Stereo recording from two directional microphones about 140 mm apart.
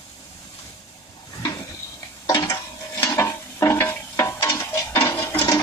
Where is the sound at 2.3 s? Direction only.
20° left (ahead or behind).